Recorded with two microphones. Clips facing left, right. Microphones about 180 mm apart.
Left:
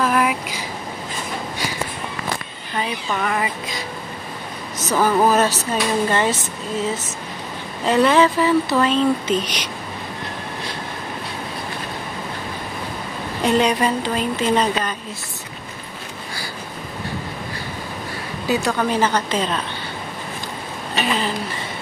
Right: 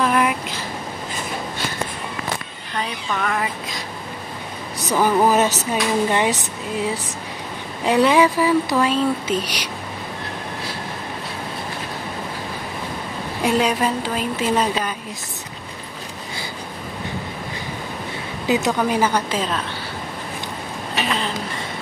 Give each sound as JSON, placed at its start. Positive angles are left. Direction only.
{"t": 0.0, "sound": "a sound", "side_deg": 0}
{"t": 2.7, "sound": "speech", "side_deg": 5}
{"t": 4.7, "sound": "speech", "side_deg": -15}
{"t": 13.4, "sound": "speech", "side_deg": -10}
{"t": 18.5, "sound": "a woman's voice", "side_deg": -20}